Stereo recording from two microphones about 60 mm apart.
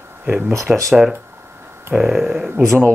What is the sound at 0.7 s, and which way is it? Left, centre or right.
Speech, centre.